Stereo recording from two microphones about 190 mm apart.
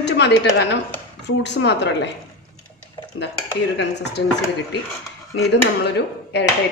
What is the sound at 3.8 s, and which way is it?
Speech, 65° left (ahead or behind).